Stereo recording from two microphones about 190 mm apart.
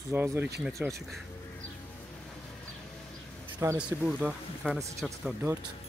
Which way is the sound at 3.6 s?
10° right (ahead or behind).